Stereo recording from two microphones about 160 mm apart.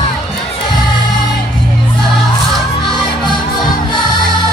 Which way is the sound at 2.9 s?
Centre (ahead or behind).